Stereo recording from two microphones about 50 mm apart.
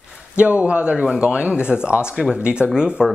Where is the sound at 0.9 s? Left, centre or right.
Centre.